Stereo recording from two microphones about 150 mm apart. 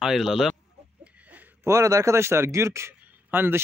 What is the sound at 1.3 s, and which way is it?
A man's voice, 15° right (ahead or behind).